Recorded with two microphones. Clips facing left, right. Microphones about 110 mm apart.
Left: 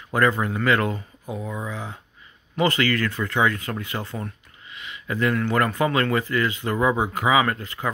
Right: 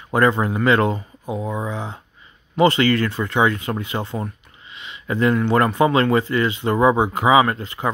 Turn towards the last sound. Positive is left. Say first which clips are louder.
# right 5 dB
turn(degrees=-25)  # may be behind; listen again after turning